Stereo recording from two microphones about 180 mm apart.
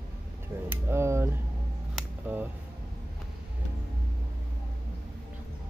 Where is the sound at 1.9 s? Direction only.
10° right (ahead or behind).